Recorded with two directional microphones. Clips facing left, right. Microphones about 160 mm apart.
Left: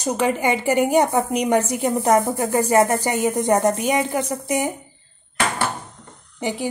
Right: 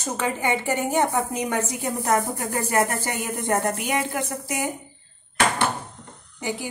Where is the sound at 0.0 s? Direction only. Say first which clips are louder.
Left 6 dB; 15° left (ahead or behind).